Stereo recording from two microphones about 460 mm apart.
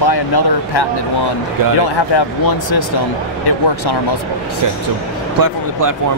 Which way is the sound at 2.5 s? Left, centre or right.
Left.